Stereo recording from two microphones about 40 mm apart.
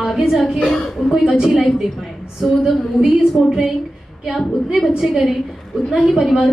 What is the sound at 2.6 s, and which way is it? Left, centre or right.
Speech, centre.